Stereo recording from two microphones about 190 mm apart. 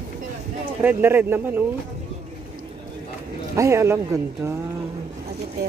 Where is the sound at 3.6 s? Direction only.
15° right (ahead or behind).